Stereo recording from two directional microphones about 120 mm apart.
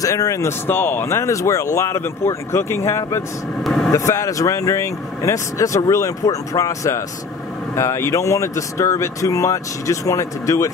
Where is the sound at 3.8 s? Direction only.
25° left (ahead or behind).